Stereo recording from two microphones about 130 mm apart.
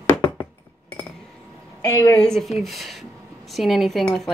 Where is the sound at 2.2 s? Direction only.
Centre (ahead or behind).